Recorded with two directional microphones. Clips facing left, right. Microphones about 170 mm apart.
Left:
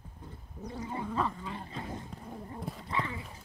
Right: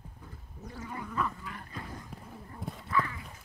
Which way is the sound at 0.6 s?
20° left (ahead or behind).